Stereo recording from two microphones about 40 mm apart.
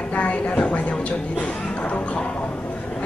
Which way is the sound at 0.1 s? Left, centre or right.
Left.